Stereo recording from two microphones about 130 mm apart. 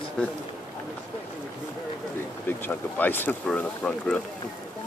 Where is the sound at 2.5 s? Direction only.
15° left (ahead or behind).